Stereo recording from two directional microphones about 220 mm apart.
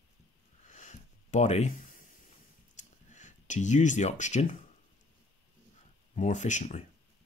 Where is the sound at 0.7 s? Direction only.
35° left (ahead or behind).